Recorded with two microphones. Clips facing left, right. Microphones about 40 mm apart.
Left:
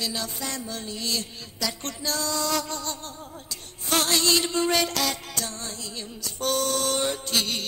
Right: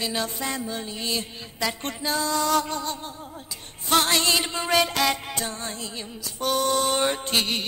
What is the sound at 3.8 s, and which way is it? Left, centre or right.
Music, right.